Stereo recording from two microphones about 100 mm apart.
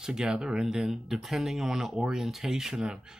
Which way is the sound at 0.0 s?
5° right (ahead or behind).